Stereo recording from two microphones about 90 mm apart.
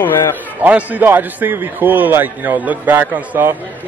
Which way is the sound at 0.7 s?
20° right (ahead or behind).